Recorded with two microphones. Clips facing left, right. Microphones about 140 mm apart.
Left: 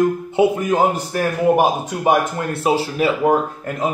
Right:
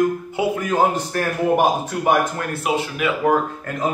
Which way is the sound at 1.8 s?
20° left (ahead or behind).